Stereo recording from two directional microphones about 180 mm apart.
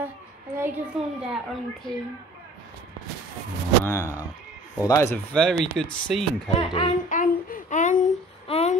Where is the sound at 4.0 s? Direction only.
10° right (ahead or behind).